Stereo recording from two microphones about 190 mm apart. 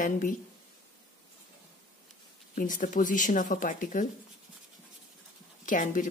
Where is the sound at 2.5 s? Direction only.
45° left (ahead or behind).